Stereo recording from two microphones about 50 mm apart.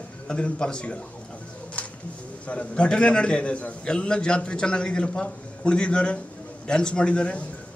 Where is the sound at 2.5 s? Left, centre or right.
Left.